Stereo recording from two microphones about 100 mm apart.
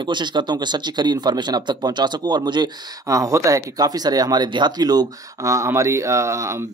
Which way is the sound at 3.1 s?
35° right (ahead or behind).